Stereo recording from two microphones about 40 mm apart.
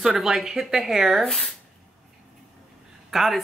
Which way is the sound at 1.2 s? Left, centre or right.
Centre.